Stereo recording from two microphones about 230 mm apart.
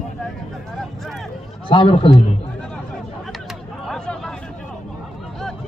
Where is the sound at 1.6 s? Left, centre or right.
Left.